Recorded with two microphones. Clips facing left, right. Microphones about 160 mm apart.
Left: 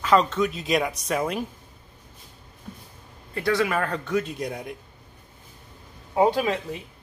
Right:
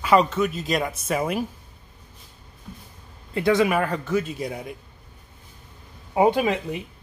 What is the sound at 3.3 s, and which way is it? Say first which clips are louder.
Speech: right 4 dB; 20° right (ahead or behind).